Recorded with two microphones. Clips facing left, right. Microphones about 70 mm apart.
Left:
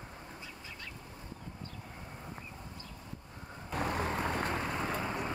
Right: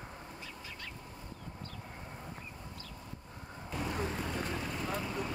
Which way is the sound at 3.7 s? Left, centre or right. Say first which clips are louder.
Left 3 dB; left.